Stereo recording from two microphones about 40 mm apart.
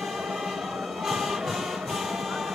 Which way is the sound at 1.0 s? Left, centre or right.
Centre.